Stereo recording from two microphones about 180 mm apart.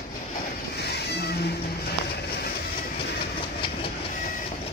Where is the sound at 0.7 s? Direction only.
65° left (ahead or behind).